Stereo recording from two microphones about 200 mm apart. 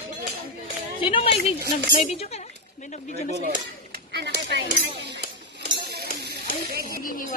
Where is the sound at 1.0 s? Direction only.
25° left (ahead or behind).